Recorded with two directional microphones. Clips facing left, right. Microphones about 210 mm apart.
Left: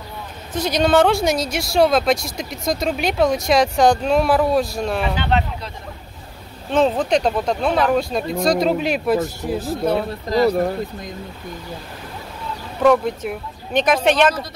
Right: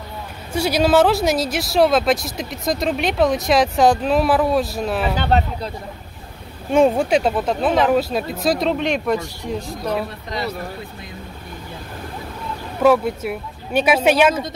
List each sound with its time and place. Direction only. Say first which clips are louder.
0.5 s speech: right 1 dB; 10° right (ahead or behind)
5.1 s speech: right 2 dB; 40° right (ahead or behind)
6.7 s speech: right 2 dB; 10° right (ahead or behind); by 9.9 s 5° left (ahead or behind)
10.3 s speech: left 11 dB; 40° left (ahead or behind)
12.8 s speech: even; 5° right (ahead or behind)